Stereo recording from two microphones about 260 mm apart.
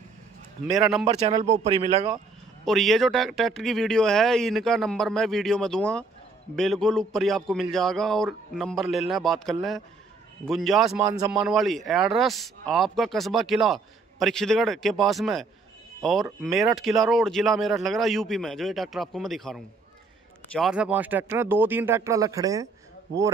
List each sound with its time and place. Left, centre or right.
0.7 s speech: centre
1.0 s speech: right
2.6 s speech: centre